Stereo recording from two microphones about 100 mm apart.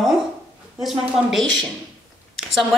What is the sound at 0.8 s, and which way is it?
Speech, centre (ahead or behind).